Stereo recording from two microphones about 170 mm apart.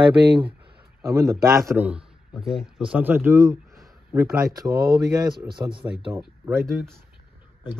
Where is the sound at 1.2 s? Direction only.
20° right (ahead or behind).